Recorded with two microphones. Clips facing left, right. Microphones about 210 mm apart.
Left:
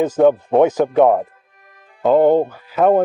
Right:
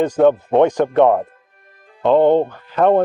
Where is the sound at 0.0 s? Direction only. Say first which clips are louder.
Even; 5° left (ahead or behind).